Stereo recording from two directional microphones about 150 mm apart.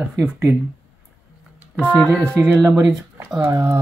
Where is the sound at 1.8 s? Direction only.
10° left (ahead or behind).